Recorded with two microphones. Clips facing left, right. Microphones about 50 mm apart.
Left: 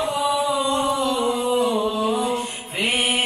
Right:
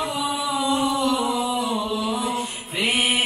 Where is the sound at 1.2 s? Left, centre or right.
Left.